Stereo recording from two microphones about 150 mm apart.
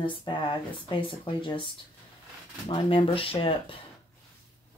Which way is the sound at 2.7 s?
35° left (ahead or behind).